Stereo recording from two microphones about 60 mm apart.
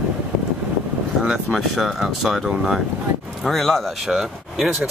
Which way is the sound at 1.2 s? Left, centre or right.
Centre.